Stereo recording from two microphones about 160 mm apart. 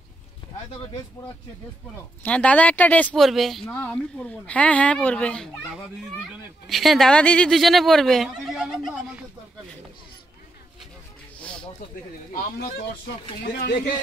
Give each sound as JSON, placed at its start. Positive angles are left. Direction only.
{"t": 2.2, "sound": "speech", "side_deg": 10}
{"t": 6.7, "sound": "speech", "side_deg": 0}
{"t": 11.3, "sound": "a sound", "side_deg": 5}
{"t": 13.6, "sound": "speech", "side_deg": 75}